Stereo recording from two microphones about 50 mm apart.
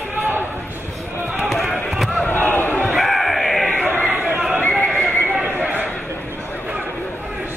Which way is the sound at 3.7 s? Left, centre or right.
Left.